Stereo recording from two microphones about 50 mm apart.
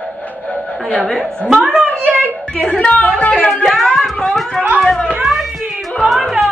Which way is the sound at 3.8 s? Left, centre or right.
Centre.